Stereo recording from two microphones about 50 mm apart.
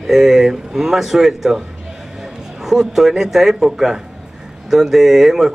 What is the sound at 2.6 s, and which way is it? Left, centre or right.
Speech, centre.